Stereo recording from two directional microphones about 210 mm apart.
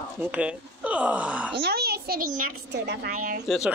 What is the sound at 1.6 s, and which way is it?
A child's voice, 50° right (ahead or behind).